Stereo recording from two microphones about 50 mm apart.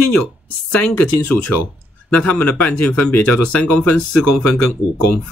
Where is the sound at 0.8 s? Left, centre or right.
Left.